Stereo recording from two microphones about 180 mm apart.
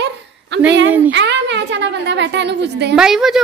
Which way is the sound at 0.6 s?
90° right.